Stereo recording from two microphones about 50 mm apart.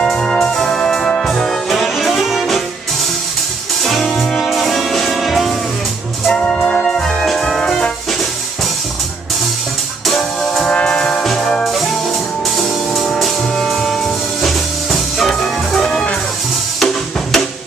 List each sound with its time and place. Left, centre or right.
0.0 s music: centre
4.0 s music: centre
6.3 s music: centre
10.0 s music: centre
10.7 s music: left
11.6 s music: centre